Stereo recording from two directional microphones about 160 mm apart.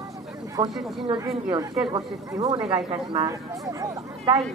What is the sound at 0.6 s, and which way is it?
Speech, 25° right (ahead or behind).